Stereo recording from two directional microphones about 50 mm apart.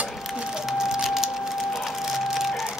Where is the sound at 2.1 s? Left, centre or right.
Centre.